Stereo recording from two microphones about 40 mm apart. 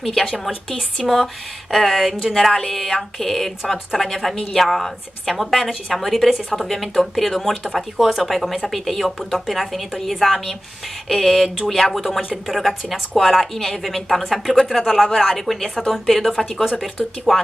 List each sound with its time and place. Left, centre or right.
0.0 s speech: centre